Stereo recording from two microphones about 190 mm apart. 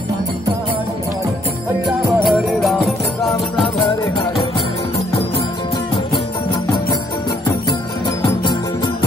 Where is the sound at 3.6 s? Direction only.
20° left (ahead or behind).